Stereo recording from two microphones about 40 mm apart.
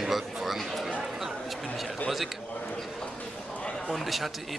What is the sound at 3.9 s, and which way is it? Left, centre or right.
Speech, centre.